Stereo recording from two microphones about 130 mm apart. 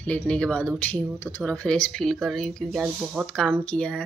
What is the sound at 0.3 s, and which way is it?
Speech, 10° left (ahead or behind).